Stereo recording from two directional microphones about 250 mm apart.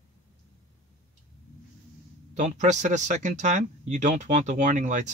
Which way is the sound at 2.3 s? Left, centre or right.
Right.